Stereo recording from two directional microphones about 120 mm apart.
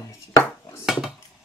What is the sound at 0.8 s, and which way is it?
Wood, 5° right (ahead or behind).